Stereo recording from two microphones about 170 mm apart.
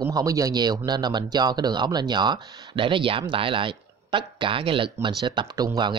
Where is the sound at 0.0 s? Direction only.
20° right (ahead or behind).